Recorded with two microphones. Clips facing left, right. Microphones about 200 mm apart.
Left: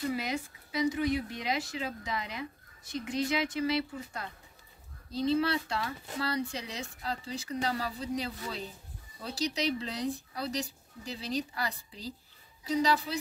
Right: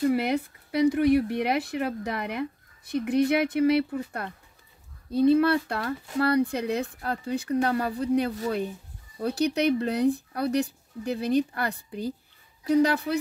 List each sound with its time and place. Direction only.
0.1 s speech: 60° right (ahead or behind)